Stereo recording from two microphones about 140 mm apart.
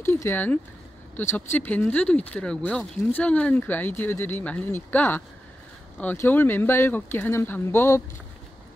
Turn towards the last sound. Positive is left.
turn(degrees=15)  # may be behind; listen again after turning